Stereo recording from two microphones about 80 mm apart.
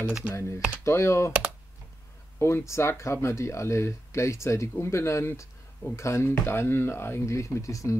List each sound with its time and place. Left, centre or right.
0.3 s speech: left
2.3 s speech: left